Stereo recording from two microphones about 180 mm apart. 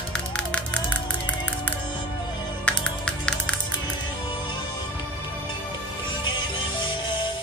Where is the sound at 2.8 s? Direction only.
5° left (ahead or behind).